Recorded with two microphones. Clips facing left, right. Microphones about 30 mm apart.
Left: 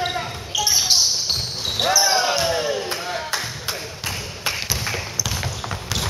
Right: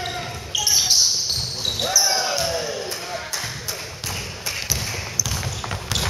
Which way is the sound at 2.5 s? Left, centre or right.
Left.